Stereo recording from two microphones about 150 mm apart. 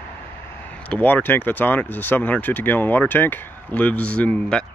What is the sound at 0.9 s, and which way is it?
Speech, 10° left (ahead or behind).